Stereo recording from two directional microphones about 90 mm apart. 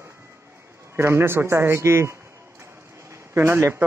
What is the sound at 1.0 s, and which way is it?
Speech, 25° right (ahead or behind).